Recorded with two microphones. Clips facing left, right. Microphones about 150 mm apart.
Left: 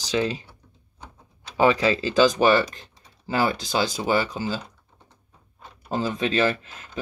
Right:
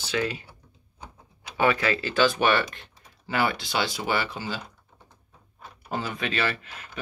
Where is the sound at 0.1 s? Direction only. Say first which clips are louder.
Left 4 dB; 25° left (ahead or behind).